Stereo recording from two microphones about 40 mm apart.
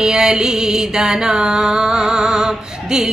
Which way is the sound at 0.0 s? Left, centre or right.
Centre.